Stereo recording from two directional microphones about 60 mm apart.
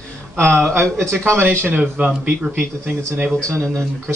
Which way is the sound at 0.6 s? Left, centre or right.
Centre.